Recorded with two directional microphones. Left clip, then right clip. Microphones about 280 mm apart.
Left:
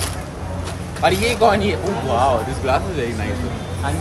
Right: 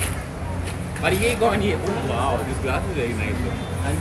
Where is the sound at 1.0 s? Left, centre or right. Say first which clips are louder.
Left 5 dB; left.